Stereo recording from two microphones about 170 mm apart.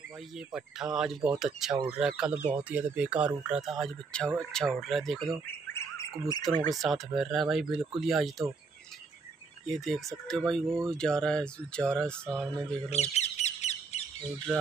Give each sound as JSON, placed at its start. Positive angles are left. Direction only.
{"t": 0.5, "sound": "speech", "side_deg": -5}
{"t": 5.7, "sound": "squawk", "side_deg": 15}
{"t": 6.7, "sound": "speech", "side_deg": 0}
{"t": 9.8, "sound": "speech", "side_deg": 0}
{"t": 10.6, "sound": "speech", "side_deg": -15}
{"t": 10.9, "sound": "speech", "side_deg": 5}
{"t": 12.9, "sound": "squawk", "side_deg": 40}
{"t": 14.5, "sound": "speech", "side_deg": -10}